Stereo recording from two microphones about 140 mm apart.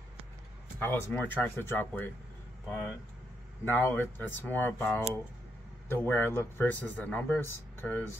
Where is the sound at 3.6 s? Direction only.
15° left (ahead or behind).